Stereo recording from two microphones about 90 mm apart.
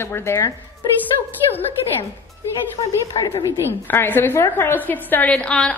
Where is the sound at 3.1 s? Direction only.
60° left (ahead or behind).